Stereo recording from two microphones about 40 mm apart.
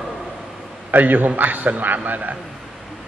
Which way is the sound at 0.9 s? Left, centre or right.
Right.